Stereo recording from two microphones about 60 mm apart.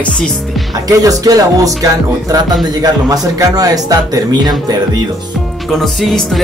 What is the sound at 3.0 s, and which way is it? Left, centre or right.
Speech, right.